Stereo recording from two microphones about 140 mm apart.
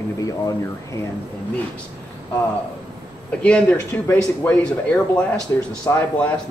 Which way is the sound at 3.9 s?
10° left (ahead or behind).